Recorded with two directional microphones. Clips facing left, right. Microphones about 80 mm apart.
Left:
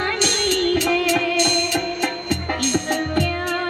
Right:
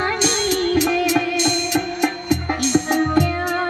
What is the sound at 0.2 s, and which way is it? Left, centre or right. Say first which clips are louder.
Music: right 1 dB; right.